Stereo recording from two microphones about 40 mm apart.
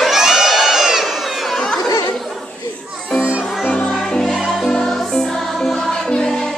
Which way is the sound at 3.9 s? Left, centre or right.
Centre.